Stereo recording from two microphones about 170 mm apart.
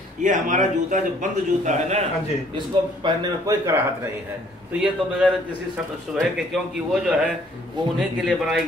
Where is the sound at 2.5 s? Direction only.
30° right (ahead or behind).